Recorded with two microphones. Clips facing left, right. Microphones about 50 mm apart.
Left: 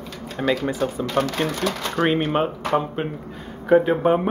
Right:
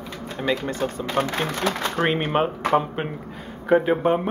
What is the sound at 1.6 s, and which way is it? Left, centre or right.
Speech, right.